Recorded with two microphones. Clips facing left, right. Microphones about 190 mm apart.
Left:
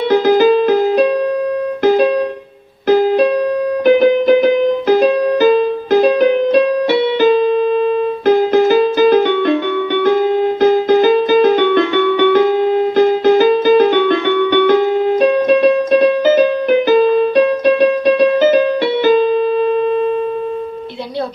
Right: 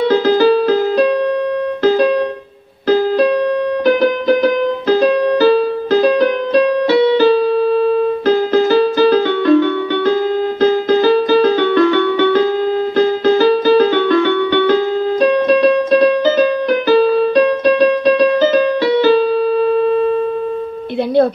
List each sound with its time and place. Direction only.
0.1 s music: 15° left (ahead or behind)
2.9 s music: 20° left (ahead or behind)
8.4 s music: 15° left (ahead or behind)